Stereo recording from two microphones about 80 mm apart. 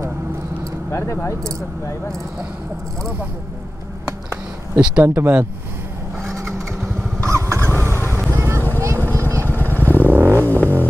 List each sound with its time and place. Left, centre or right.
0.9 s speech: left
4.7 s speech: centre
7.2 s a sound: right
8.4 s vehicle: right
9.6 s vehicle: left
10.4 s music: left